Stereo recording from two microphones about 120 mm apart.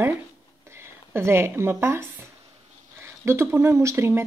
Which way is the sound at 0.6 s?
20° right (ahead or behind).